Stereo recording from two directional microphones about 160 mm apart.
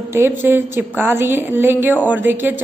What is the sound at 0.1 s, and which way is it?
A woman's voice, 15° right (ahead or behind).